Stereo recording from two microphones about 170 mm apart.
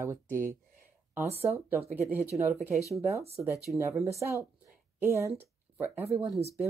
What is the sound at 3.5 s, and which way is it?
Speech, 20° left (ahead or behind).